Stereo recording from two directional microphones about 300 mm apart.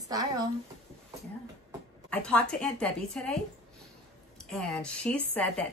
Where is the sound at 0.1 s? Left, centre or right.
Centre.